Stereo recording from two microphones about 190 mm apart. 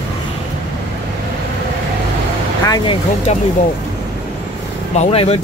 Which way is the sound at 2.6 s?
25° left (ahead or behind).